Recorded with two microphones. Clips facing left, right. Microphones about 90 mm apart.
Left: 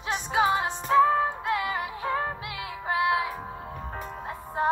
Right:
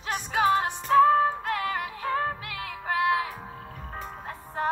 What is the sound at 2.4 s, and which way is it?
Music, 45° right (ahead or behind).